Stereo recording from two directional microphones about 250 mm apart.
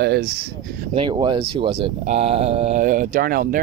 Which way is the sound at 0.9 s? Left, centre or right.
Centre.